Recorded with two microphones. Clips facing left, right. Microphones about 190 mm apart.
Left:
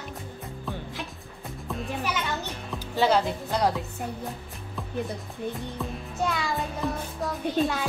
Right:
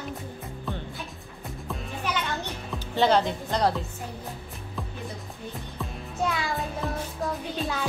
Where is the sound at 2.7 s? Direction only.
5° left (ahead or behind).